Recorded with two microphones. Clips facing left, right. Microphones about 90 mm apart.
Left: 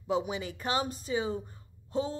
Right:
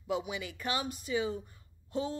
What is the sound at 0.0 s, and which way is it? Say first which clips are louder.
Speech: left 4 dB; 35° left (ahead or behind).